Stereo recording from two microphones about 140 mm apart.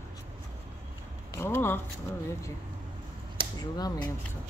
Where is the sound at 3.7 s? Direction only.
30° left (ahead or behind).